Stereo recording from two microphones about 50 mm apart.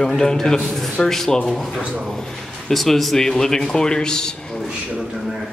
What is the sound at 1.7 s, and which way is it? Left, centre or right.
Speech, right.